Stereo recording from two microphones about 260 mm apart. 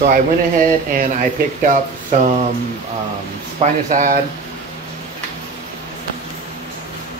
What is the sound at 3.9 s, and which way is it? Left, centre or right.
Speech, right.